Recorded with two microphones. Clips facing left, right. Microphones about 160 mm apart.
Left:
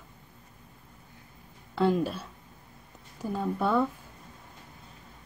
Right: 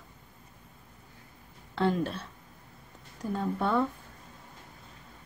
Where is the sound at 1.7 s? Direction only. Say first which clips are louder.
Left 3 dB; 5° left (ahead or behind).